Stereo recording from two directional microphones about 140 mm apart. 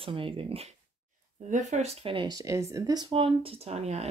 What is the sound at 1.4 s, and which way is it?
Speech, 60° right (ahead or behind).